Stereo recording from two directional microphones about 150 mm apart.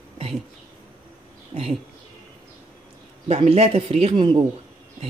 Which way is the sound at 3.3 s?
45° right (ahead or behind).